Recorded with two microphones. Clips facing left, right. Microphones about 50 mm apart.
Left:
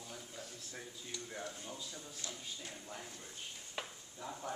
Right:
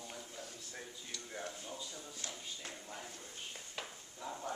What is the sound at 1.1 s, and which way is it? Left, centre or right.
Speech, centre.